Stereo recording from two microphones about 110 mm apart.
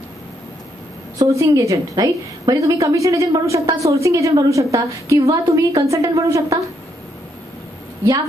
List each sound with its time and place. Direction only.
1.1 s a woman's voice: 30° right (ahead or behind)